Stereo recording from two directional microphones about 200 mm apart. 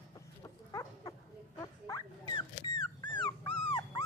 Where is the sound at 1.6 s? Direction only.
20° left (ahead or behind).